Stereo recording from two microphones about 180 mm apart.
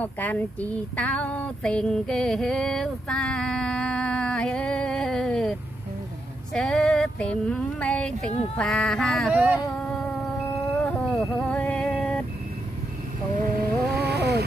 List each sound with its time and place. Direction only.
0.0 s a sound: 10° left (ahead or behind)
10.8 s music: 5° left (ahead or behind)
13.4 s vehicle: 60° right (ahead or behind)